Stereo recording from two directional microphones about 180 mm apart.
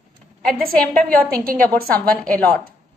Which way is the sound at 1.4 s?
55° right (ahead or behind).